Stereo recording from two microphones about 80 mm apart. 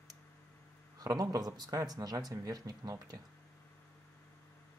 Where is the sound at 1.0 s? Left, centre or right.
Right.